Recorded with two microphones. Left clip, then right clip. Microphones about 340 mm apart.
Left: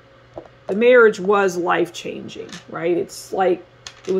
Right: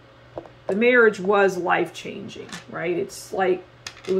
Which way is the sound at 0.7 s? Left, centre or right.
Left.